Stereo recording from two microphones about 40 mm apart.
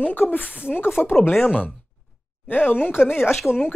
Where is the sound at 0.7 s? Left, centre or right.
Left.